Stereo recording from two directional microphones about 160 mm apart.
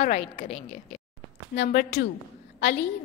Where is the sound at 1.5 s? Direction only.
85° left.